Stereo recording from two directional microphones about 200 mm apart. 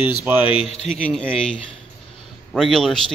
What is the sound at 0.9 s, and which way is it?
Speech, 5° left (ahead or behind).